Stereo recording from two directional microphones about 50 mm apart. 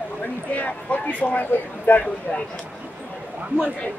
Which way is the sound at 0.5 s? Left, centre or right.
Left.